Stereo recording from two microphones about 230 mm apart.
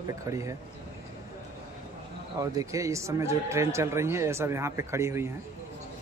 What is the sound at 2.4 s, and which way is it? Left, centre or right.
Speech, centre.